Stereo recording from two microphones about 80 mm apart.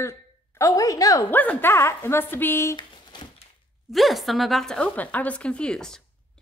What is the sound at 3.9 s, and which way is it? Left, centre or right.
Speech, centre.